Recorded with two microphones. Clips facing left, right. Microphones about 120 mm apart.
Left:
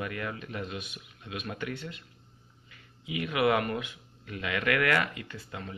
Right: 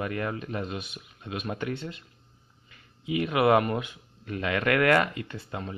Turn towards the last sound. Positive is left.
turn(degrees=-40)  # may be behind; listen again after turning